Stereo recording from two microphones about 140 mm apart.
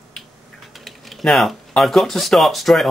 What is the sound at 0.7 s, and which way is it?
A man's voice, centre (ahead or behind).